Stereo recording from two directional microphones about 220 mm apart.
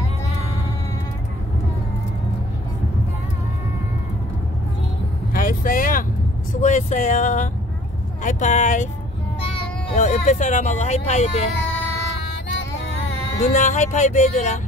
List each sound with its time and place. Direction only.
5.3 s vehicle: 40° left (ahead or behind)
6.6 s speech: 35° left (ahead or behind)
13.1 s speech: 35° left (ahead or behind)